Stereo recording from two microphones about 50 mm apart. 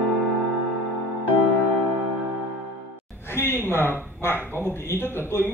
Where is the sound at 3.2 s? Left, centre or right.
Left.